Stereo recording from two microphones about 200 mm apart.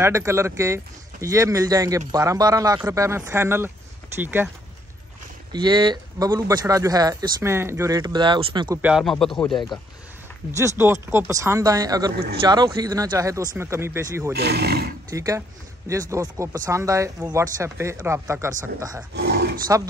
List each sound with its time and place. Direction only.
0.0 s speech: 15° right (ahead or behind)
5.5 s speech: 20° right (ahead or behind)
8.8 s speech: centre (ahead or behind)
10.5 s speech: 15° right (ahead or behind)
14.4 s speech: 55° right (ahead or behind)
15.0 s speech: 15° right (ahead or behind)
19.1 s speech: 55° right (ahead or behind)